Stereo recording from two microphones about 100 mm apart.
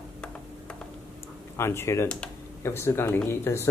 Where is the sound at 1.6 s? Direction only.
25° left (ahead or behind).